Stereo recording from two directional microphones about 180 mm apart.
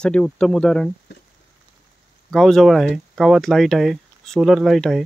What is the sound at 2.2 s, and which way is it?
Speech, centre (ahead or behind).